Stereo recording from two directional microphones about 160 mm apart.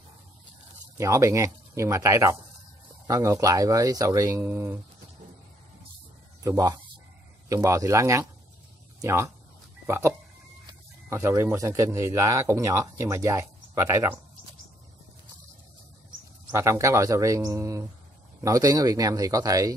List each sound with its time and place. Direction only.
0.9 s speech: 20° right (ahead or behind)
6.4 s a man's voice: 20° right (ahead or behind)
16.5 s speech: 20° right (ahead or behind)